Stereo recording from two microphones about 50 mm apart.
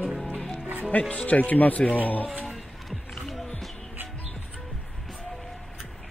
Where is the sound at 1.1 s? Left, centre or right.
Left.